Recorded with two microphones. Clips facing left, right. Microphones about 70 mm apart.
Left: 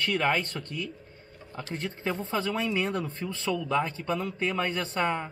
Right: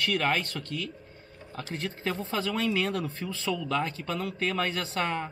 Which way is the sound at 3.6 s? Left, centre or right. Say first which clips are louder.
Left 2 dB; centre.